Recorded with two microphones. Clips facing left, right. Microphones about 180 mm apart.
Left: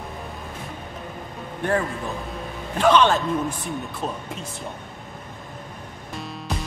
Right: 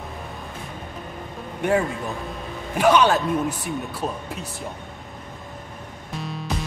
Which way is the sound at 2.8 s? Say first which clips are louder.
Even; 10° right (ahead or behind).